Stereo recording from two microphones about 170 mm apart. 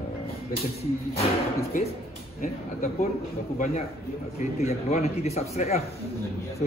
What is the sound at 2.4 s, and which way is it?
Speech, 50° left (ahead or behind).